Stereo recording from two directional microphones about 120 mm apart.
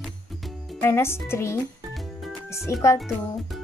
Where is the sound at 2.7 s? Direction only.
25° left (ahead or behind).